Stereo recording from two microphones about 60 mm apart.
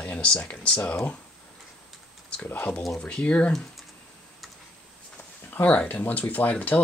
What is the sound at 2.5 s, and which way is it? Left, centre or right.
Speech, left.